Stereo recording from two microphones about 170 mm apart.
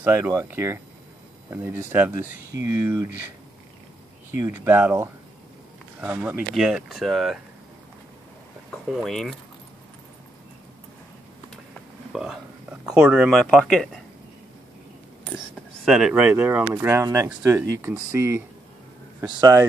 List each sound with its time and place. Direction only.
0.0 s speech: 15° right (ahead or behind)
4.4 s speech: 15° right (ahead or behind)
8.9 s speech: centre (ahead or behind)
12.1 s speech: 5° right (ahead or behind)
15.3 s speech: centre (ahead or behind); by 19.6 s 20° right (ahead or behind)